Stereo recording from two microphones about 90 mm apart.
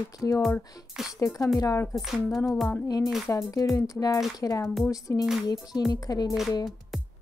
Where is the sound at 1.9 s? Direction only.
Centre (ahead or behind).